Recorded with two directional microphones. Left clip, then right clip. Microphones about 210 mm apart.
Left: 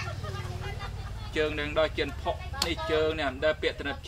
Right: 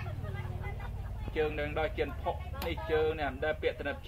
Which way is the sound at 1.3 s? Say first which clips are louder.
Left 4 dB; 55° left (ahead or behind).